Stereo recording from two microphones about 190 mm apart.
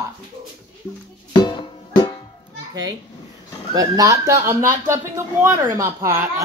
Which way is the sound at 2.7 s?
20° right (ahead or behind).